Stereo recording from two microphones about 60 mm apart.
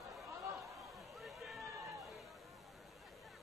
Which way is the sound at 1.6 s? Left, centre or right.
Right.